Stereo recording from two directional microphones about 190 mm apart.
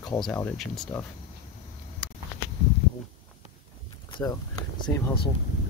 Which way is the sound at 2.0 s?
5° left (ahead or behind).